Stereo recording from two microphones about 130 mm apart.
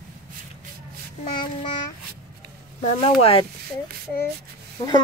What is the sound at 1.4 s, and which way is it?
Speech, 40° left (ahead or behind).